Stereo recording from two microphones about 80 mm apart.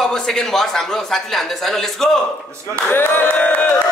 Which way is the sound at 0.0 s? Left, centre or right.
Centre.